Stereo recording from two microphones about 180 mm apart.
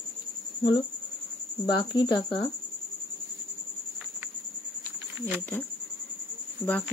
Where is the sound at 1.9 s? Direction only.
25° left (ahead or behind).